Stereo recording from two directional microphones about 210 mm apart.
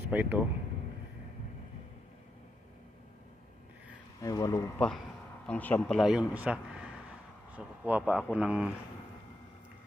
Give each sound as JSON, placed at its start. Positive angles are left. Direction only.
{"t": 0.1, "sound": "speech", "side_deg": -10}
{"t": 4.2, "sound": "speech", "side_deg": 15}